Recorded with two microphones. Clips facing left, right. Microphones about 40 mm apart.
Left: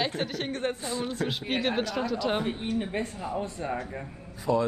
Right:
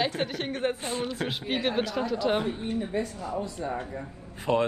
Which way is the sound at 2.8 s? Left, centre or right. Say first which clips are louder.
Right 1 dB; left.